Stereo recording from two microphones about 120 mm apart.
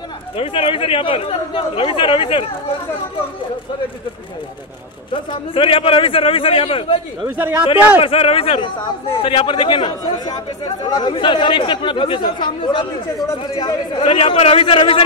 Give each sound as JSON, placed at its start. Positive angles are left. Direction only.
{"t": 0.4, "sound": "speech", "side_deg": 50}
{"t": 5.1, "sound": "speech", "side_deg": 45}
{"t": 7.2, "sound": "speech", "side_deg": -20}
{"t": 8.0, "sound": "speech", "side_deg": 50}